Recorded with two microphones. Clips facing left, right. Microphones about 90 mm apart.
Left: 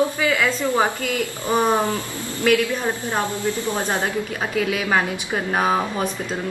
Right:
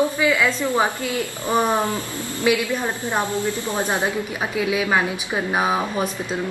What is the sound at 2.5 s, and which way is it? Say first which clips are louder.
A woman's voice: left 2 dB; 15° right (ahead or behind).